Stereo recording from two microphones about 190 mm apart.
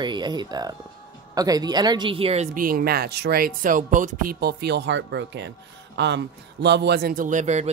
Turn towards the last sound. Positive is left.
turn(degrees=-40)  # may be behind; listen again after turning